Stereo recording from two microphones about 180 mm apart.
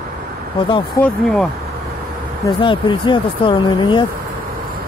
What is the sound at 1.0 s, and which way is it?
Speech, 5° left (ahead or behind).